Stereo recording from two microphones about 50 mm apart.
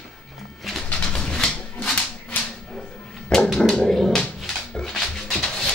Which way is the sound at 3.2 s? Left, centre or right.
Left.